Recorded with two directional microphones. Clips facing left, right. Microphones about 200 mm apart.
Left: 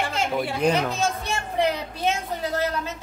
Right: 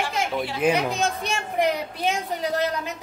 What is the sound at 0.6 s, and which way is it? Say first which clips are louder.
A woman's voice: right 1 dB; 15° right (ahead or behind).